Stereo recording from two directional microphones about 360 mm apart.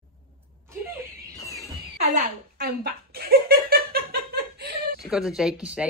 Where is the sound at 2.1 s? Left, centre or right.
Right.